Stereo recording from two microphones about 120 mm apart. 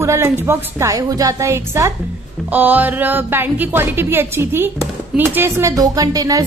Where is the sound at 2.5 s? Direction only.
15° right (ahead or behind); by 6.4 s 30° right (ahead or behind).